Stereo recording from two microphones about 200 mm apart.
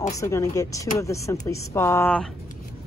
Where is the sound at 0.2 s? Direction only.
15° left (ahead or behind).